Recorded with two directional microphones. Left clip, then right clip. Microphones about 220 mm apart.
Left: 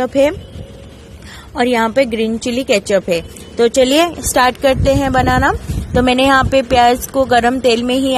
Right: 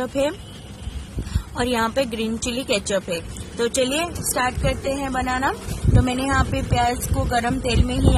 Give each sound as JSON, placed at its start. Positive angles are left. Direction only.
{"t": 0.0, "sound": "a woman's voice", "side_deg": 25}
{"t": 1.5, "sound": "a woman's voice", "side_deg": 25}